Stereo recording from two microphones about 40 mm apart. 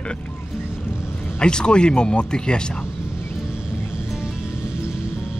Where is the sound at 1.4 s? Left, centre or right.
Left.